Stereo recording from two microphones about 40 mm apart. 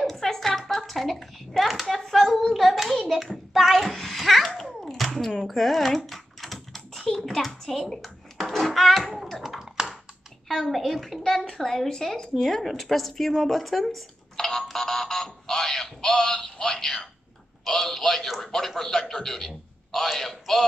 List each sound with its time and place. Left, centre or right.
0.0 s a sound: centre
1.7 s a woman's voice: centre
4.9 s music: centre
5.4 s typing: centre
8.0 s a sound: centre
9.8 s computer keyboard: centre
10.5 s a woman's voice: centre